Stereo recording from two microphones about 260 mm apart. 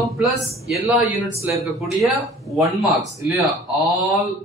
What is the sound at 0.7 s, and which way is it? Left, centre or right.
A man's voice, centre.